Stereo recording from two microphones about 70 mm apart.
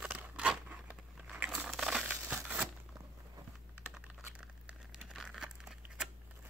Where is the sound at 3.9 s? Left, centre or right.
Centre.